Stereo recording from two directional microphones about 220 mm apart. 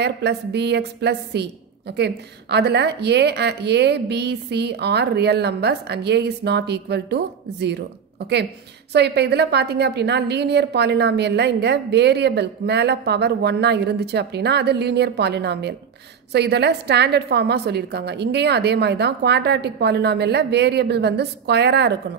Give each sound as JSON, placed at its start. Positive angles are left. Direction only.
{"t": 0.0, "sound": "a woman's voice", "side_deg": -50}